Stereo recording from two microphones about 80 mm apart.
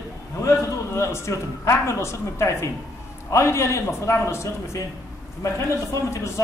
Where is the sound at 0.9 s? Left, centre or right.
Left.